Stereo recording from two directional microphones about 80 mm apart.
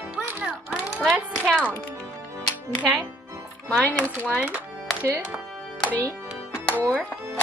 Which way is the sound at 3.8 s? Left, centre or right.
Centre.